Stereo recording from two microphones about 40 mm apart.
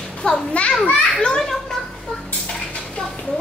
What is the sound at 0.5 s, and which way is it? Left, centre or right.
Speech, left.